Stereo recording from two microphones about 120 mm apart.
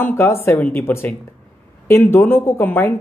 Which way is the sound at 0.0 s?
20° left (ahead or behind).